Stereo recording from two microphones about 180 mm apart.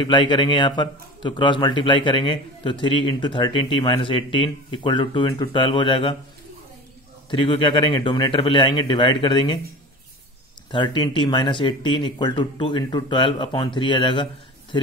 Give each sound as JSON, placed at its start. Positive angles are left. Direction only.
{"t": 0.0, "sound": "a man's voice", "side_deg": 25}
{"t": 7.2, "sound": "a man's voice", "side_deg": 30}
{"t": 10.7, "sound": "a man's voice", "side_deg": 25}